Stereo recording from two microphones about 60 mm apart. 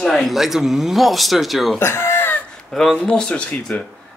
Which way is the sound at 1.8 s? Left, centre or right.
Left.